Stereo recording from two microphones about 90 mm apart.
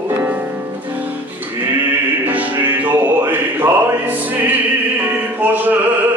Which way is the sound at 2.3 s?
20° right (ahead or behind).